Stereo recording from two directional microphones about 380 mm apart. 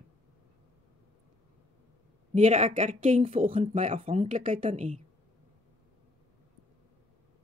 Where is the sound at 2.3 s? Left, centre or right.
Centre.